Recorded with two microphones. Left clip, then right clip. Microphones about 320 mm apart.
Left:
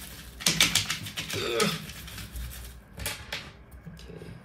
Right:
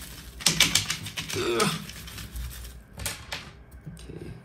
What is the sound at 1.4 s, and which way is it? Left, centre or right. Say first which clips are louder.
Throat clearing: right 2 dB; centre.